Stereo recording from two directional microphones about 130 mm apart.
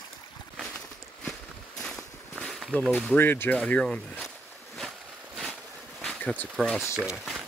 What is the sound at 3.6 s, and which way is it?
Speech, 5° left (ahead or behind).